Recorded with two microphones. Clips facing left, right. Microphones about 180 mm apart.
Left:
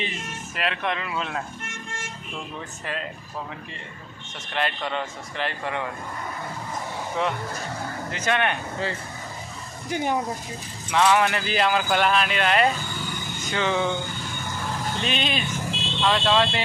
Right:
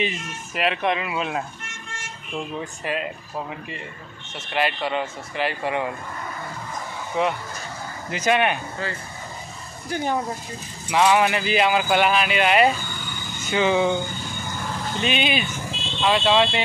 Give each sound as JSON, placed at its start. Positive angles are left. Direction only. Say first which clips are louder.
{"t": 0.6, "sound": "speech", "louder": "right 5 dB", "side_deg": -15}
{"t": 2.8, "sound": "speech", "louder": "right 5 dB", "side_deg": -15}
{"t": 4.5, "sound": "speech", "louder": "right 4 dB", "side_deg": -5}
{"t": 7.2, "sound": "speech", "louder": "right 4 dB", "side_deg": -5}
{"t": 9.8, "sound": "speech", "louder": "even", "side_deg": 15}
{"t": 10.9, "sound": "speech", "louder": "right 2 dB", "side_deg": -10}
{"t": 15.0, "sound": "speech", "louder": "right 6 dB", "side_deg": -5}